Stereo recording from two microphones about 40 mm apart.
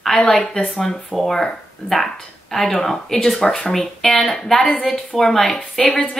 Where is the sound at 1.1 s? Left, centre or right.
Centre.